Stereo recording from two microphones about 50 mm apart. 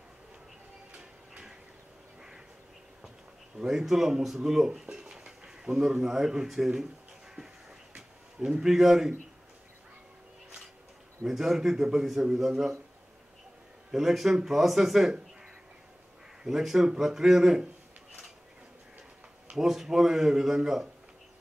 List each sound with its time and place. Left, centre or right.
0.9 s music: centre
3.5 s a man's voice: centre
8.5 s a man's voice: centre
11.2 s a man's voice: centre
13.9 s speech: centre
16.4 s a man's voice: centre
19.5 s a man's voice: centre